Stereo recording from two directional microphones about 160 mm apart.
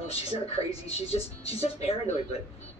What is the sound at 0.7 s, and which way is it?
Speech, 40° left (ahead or behind).